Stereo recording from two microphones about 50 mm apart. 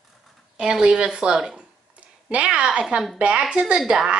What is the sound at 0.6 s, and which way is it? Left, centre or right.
A woman's voice, centre.